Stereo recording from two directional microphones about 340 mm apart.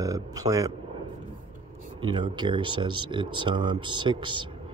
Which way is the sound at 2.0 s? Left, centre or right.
Centre.